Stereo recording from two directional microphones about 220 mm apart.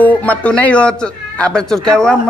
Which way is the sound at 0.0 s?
5° left (ahead or behind).